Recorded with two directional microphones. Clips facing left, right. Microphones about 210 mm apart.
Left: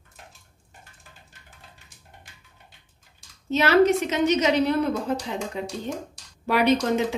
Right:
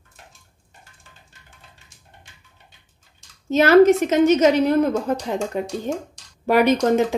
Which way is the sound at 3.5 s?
45° right (ahead or behind).